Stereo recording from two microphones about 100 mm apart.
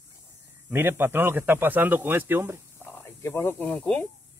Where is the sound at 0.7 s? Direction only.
25° right (ahead or behind).